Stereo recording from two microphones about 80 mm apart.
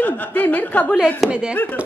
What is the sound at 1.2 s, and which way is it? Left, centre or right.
Speech, centre.